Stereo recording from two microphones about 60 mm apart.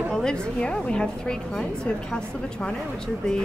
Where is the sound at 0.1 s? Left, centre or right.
Centre.